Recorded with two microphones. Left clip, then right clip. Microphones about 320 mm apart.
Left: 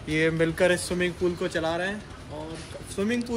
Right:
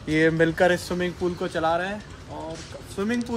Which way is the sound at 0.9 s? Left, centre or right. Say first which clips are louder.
Even; centre.